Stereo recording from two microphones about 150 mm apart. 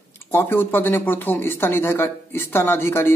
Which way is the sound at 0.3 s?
15° left (ahead or behind).